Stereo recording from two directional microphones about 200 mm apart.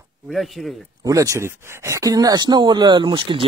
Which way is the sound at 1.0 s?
15° right (ahead or behind).